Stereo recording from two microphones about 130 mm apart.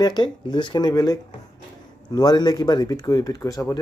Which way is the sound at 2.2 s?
30° left (ahead or behind).